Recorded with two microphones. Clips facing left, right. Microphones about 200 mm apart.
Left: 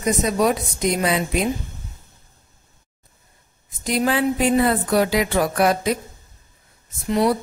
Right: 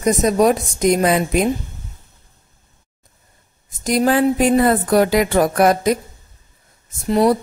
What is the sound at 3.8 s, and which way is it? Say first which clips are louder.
Speech: right 5 dB; 45° right (ahead or behind).